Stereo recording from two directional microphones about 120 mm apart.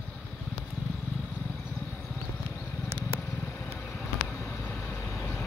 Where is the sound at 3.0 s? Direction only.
15° left (ahead or behind).